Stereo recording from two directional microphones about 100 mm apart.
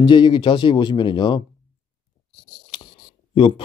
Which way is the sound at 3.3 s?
60° left (ahead or behind).